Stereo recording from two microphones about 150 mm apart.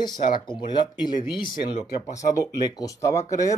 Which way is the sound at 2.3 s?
20° left (ahead or behind).